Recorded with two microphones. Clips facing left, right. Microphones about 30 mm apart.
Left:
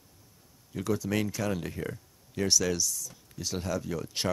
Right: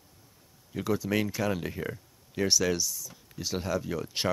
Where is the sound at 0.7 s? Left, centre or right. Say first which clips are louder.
Right 1 dB; centre.